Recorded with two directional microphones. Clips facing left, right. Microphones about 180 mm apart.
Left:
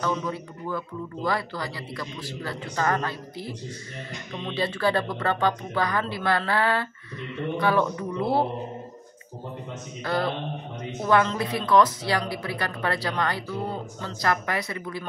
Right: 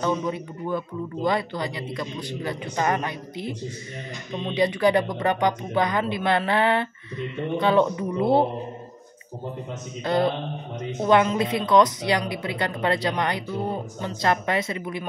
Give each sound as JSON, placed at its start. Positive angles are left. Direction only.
{"t": 0.0, "sound": "a woman's voice", "side_deg": -20}
{"t": 10.0, "sound": "a woman's voice", "side_deg": -20}